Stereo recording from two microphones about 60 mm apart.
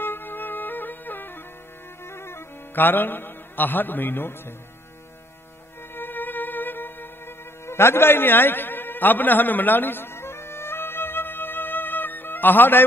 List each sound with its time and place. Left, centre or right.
0.0 s music: left
2.0 s music: left
5.9 s music: left